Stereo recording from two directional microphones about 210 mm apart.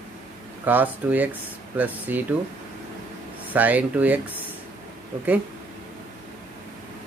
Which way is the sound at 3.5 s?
5° right (ahead or behind).